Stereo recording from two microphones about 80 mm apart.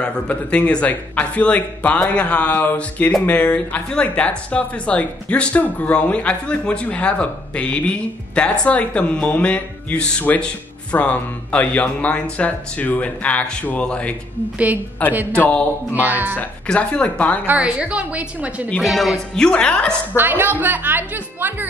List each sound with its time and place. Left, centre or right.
0.0 s speech: centre
15.9 s a woman's voice: right
16.3 s speech: centre
17.6 s a woman's voice: centre
18.8 s speech: centre
20.2 s a woman's voice: right